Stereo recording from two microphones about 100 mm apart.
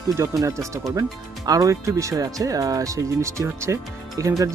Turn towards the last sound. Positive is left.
turn(degrees=-30)  # may be behind; listen again after turning